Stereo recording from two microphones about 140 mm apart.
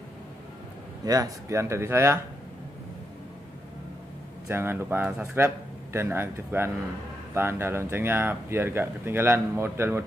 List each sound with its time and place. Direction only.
1.0 s speech: 25° right (ahead or behind)
4.5 s speech: 15° right (ahead or behind)